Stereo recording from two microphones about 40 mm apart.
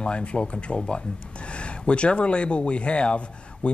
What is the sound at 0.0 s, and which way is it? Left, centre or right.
Speech, left.